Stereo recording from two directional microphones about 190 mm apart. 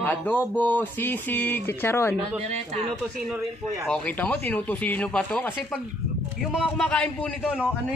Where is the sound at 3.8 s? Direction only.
5° left (ahead or behind).